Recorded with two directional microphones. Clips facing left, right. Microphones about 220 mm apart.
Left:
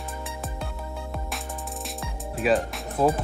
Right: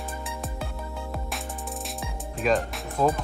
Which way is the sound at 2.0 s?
Centre (ahead or behind).